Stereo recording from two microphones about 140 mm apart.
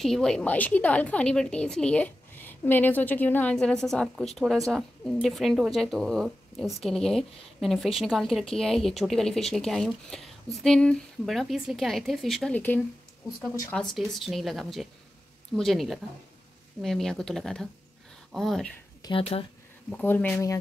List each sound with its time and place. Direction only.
0.0 s a woman's voice: 5° left (ahead or behind)
12.5 s a woman's voice: 15° left (ahead or behind)
13.9 s speech: centre (ahead or behind)
19.0 s speech: 40° left (ahead or behind)
19.9 s a woman's voice: 10° left (ahead or behind)